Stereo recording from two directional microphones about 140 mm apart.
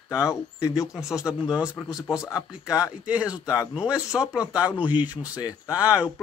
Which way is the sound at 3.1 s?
10° right (ahead or behind).